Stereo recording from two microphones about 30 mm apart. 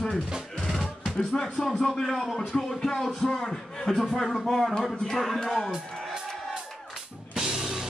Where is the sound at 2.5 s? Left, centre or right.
Left.